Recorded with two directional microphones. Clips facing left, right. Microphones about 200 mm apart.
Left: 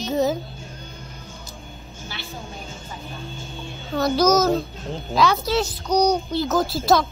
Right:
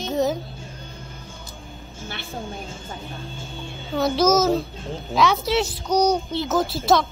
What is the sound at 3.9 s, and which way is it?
Speech, centre (ahead or behind).